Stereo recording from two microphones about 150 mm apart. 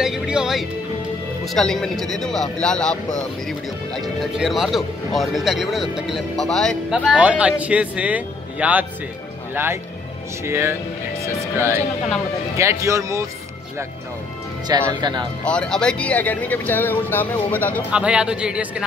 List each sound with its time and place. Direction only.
0.0 s speech: 5° right (ahead or behind); by 13.3 s 20° right (ahead or behind)
14.7 s speech: 30° right (ahead or behind)
15.4 s speech: 5° left (ahead or behind)
17.9 s speech: 5° right (ahead or behind)